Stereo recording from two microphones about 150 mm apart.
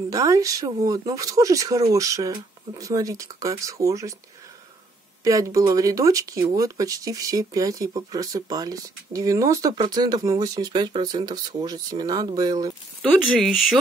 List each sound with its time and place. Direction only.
0.1 s speech: 25° right (ahead or behind)
5.2 s speech: 20° right (ahead or behind)
13.0 s speech: centre (ahead or behind)